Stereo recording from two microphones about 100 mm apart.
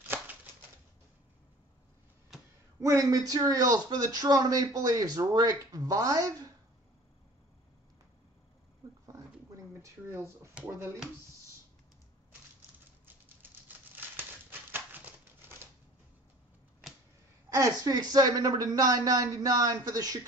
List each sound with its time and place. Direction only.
0.1 s a sound: 20° right (ahead or behind)
2.8 s speech: 35° right (ahead or behind)
9.0 s a sound: 30° right (ahead or behind)
10.5 s speech: 20° right (ahead or behind)
13.0 s patter: 20° right (ahead or behind)
14.7 s crumpling: 20° right (ahead or behind)
17.5 s speech: 40° right (ahead or behind)